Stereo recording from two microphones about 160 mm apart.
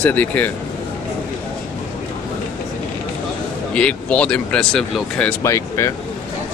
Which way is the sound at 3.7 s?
5° left (ahead or behind).